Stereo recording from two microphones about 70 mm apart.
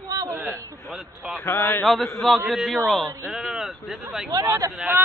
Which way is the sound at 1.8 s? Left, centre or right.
Centre.